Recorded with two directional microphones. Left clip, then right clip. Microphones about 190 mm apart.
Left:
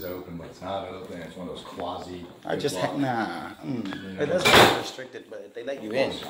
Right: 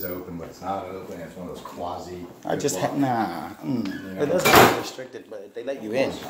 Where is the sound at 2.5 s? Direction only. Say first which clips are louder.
Right 2 dB; 25° right (ahead or behind).